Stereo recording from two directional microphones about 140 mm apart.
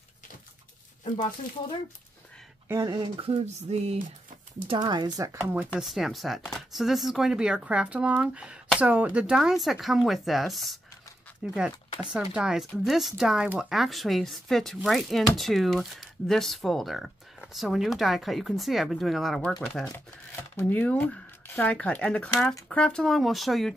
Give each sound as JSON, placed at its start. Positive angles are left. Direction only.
{"t": 2.7, "sound": "speech", "side_deg": -30}
{"t": 3.3, "sound": "music", "side_deg": -50}
{"t": 4.6, "sound": "speech", "side_deg": -30}
{"t": 5.5, "sound": "speech", "side_deg": -10}